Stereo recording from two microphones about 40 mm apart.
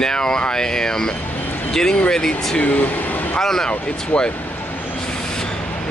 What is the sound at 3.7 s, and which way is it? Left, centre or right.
Speech, left.